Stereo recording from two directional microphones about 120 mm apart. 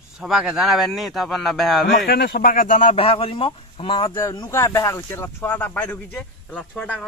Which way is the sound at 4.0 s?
30° left (ahead or behind).